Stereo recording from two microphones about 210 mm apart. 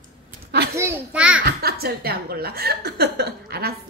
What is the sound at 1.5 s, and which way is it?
A woman's voice, 45° right (ahead or behind).